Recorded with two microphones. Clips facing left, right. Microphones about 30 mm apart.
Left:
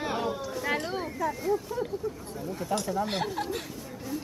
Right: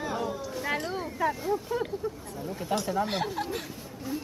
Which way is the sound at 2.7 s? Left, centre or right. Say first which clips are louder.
Right 1 dB; right.